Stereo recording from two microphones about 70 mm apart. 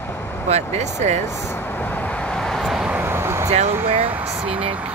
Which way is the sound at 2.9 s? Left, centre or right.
Right.